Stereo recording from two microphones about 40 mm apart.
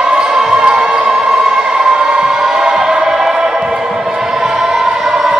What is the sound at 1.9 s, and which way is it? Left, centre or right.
Music, right.